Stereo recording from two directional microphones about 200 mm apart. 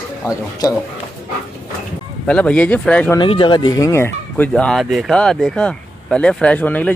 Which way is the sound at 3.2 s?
25° left (ahead or behind).